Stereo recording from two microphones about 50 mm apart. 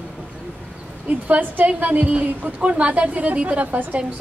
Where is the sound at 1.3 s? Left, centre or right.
Right.